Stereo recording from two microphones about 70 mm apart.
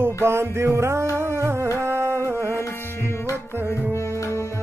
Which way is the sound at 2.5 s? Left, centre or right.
Left.